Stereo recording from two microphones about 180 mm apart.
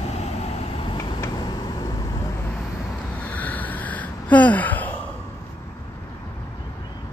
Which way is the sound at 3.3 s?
10° left (ahead or behind).